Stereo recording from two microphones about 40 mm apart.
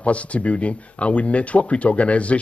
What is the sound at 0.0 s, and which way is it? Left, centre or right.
Speech, left.